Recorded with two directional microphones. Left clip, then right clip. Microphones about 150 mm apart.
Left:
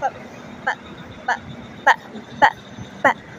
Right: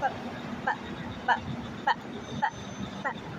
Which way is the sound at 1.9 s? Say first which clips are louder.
Left 12 dB; 45° left (ahead or behind).